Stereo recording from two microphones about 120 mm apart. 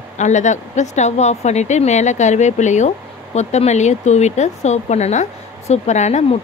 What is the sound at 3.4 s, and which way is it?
Speech, 65° left (ahead or behind).